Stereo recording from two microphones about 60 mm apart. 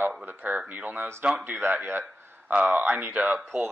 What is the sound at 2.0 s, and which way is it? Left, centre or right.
Speech, centre.